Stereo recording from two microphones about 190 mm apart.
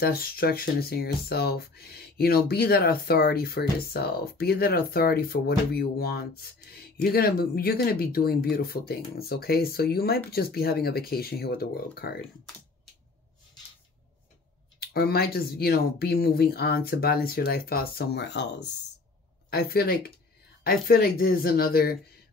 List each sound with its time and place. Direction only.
0.0 s speech: 55° left (ahead or behind)
14.9 s speech: 55° left (ahead or behind)
19.5 s speech: 55° left (ahead or behind)